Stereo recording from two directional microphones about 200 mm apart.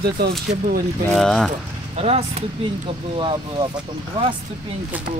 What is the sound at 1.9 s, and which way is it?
Speech, 30° right (ahead or behind).